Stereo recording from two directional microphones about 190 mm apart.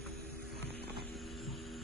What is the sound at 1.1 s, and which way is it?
Vehicle, centre (ahead or behind).